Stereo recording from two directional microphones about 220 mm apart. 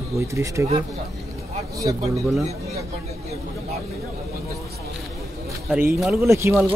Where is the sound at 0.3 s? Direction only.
15° right (ahead or behind).